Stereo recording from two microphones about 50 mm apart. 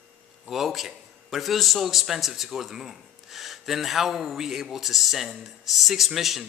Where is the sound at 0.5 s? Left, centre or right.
Centre.